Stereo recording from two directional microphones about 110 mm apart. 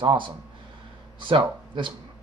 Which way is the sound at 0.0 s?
45° right (ahead or behind).